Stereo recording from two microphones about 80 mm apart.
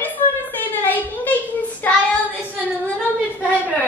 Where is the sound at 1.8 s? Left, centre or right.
Left.